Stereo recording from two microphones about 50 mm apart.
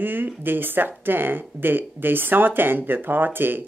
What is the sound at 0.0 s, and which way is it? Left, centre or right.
Speech, right.